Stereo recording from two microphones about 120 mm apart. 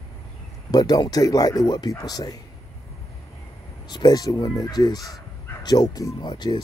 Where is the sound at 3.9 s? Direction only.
35° left (ahead or behind).